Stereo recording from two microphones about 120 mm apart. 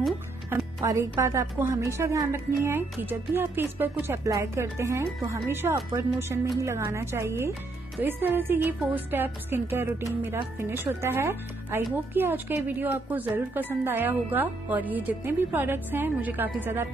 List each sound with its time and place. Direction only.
0.5 s speech: 25° right (ahead or behind)